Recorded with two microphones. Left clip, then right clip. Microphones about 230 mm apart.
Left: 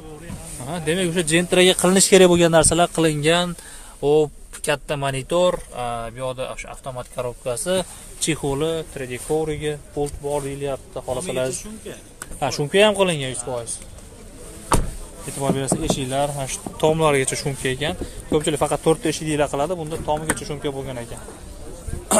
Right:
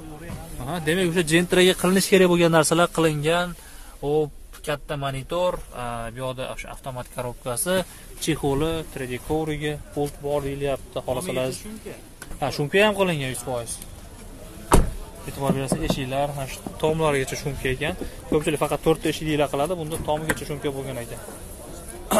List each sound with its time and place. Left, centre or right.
0.7 s speech: centre
3.2 s speech: centre
4.0 s speech: left
5.8 s speech: centre
13.3 s speech: centre
15.4 s speech: centre
16.3 s speech: left; by 21.1 s centre